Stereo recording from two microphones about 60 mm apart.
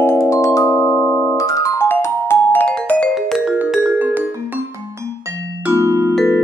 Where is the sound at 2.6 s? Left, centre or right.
Centre.